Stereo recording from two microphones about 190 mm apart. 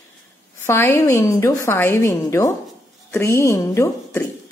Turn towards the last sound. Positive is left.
turn(degrees=15)  # may be behind; listen again after turning